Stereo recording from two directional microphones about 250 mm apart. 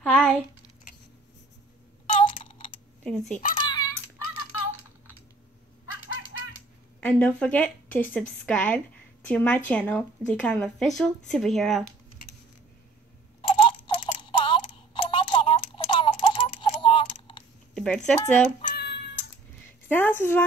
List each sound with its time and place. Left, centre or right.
0.0 s a sound: centre
2.0 s a sound: left
3.0 s speech: centre
3.5 s typing: centre
4.2 s typing: left
7.0 s a woman's voice: centre
13.4 s clock: centre
15.0 s tick: centre
17.7 s a woman's voice: centre
18.6 s cat: left
19.9 s a woman's voice: centre